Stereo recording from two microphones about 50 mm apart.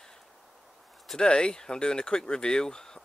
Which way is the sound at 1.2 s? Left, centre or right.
Centre.